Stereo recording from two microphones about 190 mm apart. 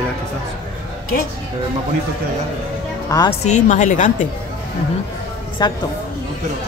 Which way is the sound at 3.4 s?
40° left (ahead or behind).